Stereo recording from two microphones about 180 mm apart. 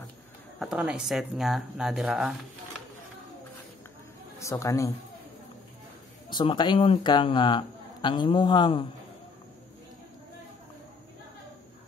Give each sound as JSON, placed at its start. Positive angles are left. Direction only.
{"t": 0.6, "sound": "speech", "side_deg": -5}
{"t": 4.4, "sound": "a man's voice", "side_deg": 15}
{"t": 6.3, "sound": "speech", "side_deg": 25}